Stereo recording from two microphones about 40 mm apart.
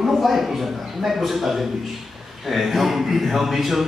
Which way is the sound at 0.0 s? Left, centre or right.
Centre.